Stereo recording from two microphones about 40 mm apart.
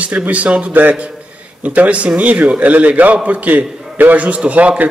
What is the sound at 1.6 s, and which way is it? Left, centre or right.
A man's voice, right.